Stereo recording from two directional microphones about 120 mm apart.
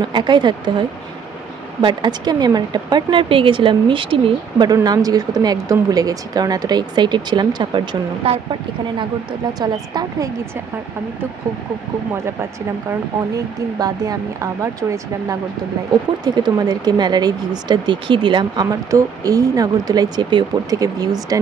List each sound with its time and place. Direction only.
0.0 s speech: 40° right (ahead or behind)
9.6 s speech: 30° right (ahead or behind)
13.3 s speech: 30° right (ahead or behind)
16.4 s speech: 35° right (ahead or behind)